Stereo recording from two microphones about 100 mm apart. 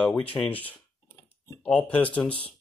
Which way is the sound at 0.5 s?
15° left (ahead or behind).